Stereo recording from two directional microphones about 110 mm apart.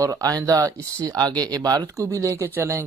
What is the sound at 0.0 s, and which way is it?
Speech, 30° right (ahead or behind).